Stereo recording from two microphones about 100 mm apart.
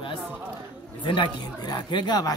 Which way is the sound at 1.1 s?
50° left (ahead or behind).